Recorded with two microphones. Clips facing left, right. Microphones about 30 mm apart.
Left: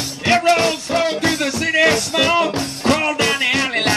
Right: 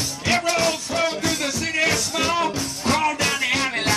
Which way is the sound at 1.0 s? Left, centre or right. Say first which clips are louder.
Left 3 dB; left.